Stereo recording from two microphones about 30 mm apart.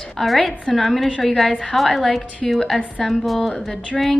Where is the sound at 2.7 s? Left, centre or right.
Centre.